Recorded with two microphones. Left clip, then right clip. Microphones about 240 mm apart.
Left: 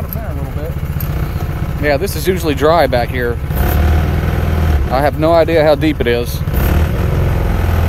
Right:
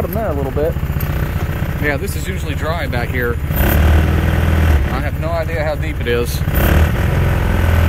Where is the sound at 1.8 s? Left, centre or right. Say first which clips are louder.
Left 5 dB; centre.